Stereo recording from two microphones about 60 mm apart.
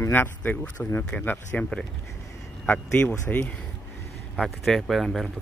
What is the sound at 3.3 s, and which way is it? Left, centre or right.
Speech, left.